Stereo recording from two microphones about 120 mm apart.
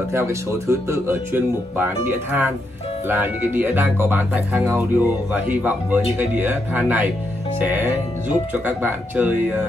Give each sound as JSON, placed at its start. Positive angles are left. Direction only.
{"t": 0.1, "sound": "speech", "side_deg": -25}